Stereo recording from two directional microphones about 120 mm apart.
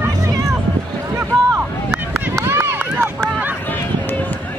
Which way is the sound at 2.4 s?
20° right (ahead or behind).